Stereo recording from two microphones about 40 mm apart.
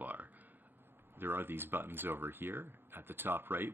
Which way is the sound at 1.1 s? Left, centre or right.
Right.